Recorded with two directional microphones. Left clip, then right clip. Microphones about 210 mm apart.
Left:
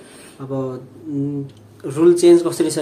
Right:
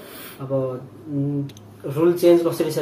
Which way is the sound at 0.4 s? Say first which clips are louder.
Right 2 dB; 40° left (ahead or behind).